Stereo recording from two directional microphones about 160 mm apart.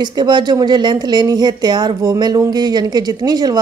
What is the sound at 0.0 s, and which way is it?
Speech, 30° right (ahead or behind).